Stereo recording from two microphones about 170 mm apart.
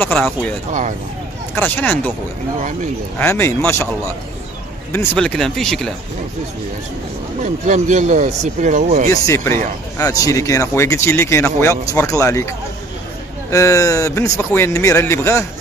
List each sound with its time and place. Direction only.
0.0 s speech: 5° left (ahead or behind)
3.2 s speech: 15° left (ahead or behind)
4.9 s speech: 5° left (ahead or behind)
7.4 s speech: 45° right (ahead or behind)
9.1 s speech: 20° left (ahead or behind)